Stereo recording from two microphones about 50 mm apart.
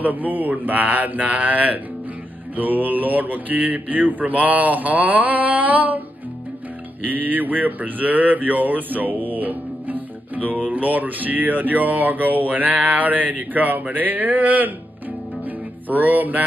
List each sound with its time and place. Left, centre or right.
0.0 s speech: right
7.1 s speech: right
15.4 s music: right